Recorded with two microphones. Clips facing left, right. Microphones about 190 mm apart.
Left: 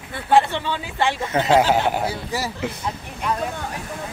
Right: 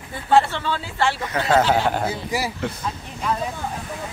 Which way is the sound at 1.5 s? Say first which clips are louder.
Even; 10° left (ahead or behind).